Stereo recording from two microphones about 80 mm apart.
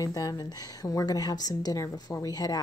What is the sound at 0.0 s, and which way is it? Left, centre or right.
A woman's voice, left.